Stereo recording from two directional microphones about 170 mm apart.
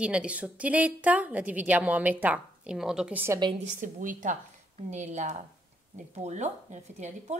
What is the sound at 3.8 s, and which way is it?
A woman's voice, 50° right (ahead or behind).